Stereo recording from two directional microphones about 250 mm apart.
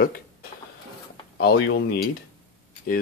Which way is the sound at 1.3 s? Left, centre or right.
Left.